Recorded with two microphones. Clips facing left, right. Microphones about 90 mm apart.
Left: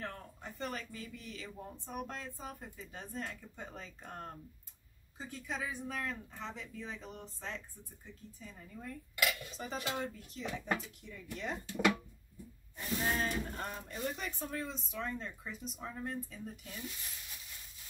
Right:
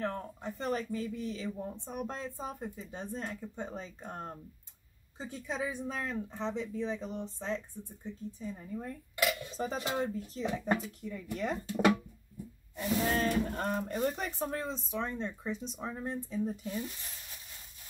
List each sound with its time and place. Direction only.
0.0 s speech: 35° right (ahead or behind)
12.7 s a sound: 90° right
13.6 s speech: 55° right (ahead or behind); by 16.8 s 30° right (ahead or behind)